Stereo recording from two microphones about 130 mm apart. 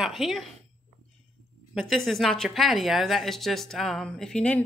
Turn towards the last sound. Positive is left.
turn(degrees=5)  # may be behind; listen again after turning